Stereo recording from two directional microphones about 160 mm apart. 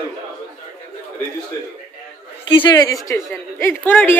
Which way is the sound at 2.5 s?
30° left (ahead or behind).